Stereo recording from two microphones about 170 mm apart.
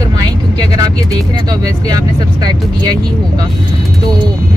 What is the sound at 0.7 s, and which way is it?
Speech, 20° right (ahead or behind).